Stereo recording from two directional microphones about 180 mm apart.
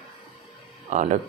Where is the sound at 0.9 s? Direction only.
45° right (ahead or behind).